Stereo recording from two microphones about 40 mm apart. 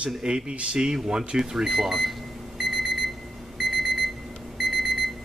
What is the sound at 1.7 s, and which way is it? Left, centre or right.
Speech, centre.